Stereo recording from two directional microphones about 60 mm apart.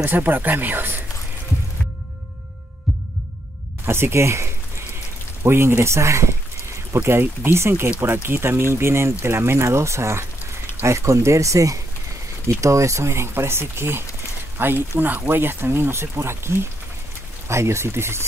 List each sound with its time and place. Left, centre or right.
0.0 s speech: right
3.8 s speech: right